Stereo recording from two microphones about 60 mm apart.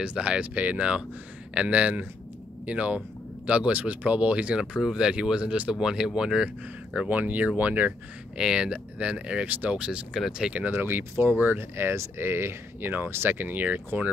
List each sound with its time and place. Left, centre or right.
0.0 s speech: centre
7.1 s speech: right
8.4 s speech: centre
10.7 s speech: right